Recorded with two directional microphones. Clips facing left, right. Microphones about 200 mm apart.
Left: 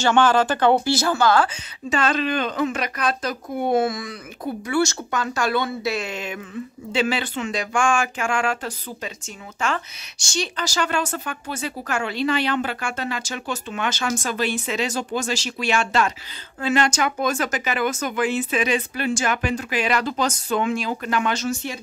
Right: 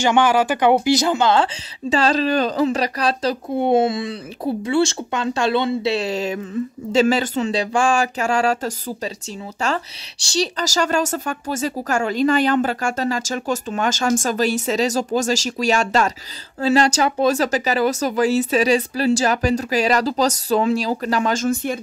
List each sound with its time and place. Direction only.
0.0 s a woman's voice: 15° right (ahead or behind); by 21.7 s 50° right (ahead or behind)